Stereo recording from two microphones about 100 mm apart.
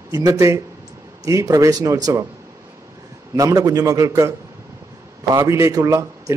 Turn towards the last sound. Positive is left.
turn(degrees=-30)  # may be behind; listen again after turning